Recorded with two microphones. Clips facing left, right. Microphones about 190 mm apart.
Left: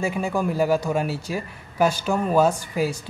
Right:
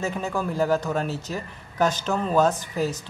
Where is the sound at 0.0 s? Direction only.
10° left (ahead or behind).